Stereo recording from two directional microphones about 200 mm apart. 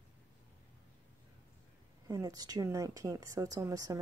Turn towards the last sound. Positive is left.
turn(degrees=-15)  # may be behind; listen again after turning